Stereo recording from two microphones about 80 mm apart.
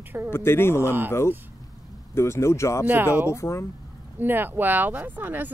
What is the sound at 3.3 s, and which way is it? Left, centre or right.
Speech, left.